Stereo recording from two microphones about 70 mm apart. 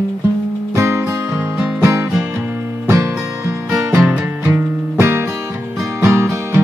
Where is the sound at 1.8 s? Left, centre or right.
Right.